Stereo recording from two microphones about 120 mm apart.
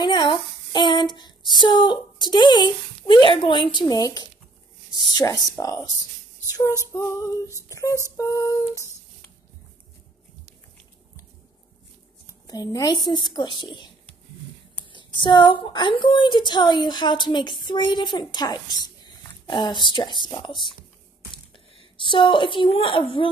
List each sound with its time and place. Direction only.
0.0 s a sound: 40° left (ahead or behind)
1.6 s a woman's voice: 40° left (ahead or behind)
6.9 s humming: 25° left (ahead or behind)
12.3 s a woman's voice: 30° left (ahead or behind)
22.0 s a woman's voice: 45° left (ahead or behind)